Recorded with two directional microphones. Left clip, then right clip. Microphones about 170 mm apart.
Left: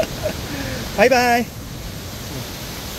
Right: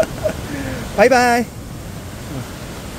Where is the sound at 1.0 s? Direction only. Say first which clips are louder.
Right 2 dB; 15° right (ahead or behind).